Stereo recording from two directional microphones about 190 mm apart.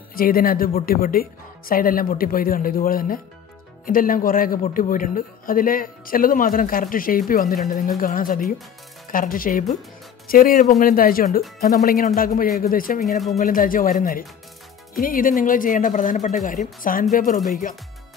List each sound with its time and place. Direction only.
0.1 s a man's voice: 50° left (ahead or behind)